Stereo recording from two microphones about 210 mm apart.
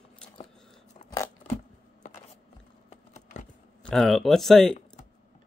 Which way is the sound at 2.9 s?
35° left (ahead or behind).